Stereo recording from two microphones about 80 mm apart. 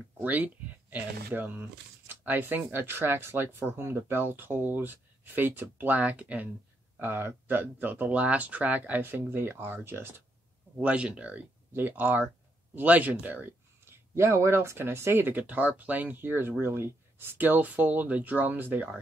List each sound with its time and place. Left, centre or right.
0.2 s speech: centre
10.8 s speech: centre